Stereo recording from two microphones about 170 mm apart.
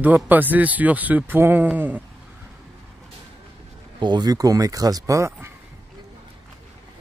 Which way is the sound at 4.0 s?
25° right (ahead or behind).